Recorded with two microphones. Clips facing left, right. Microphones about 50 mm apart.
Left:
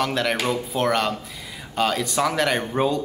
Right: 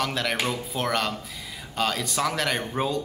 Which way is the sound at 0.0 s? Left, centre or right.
Centre.